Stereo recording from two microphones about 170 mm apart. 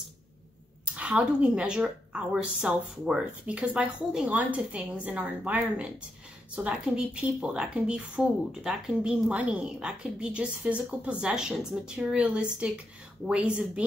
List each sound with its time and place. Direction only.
0.9 s a woman's voice: 5° right (ahead or behind)